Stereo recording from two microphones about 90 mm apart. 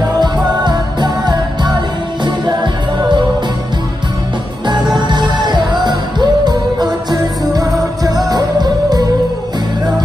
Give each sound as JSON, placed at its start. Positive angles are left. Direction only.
{"t": 0.2, "sound": "music", "side_deg": -55}
{"t": 4.6, "sound": "music", "side_deg": -55}